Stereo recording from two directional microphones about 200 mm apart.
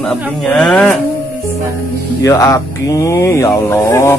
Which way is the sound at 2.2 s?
15° left (ahead or behind).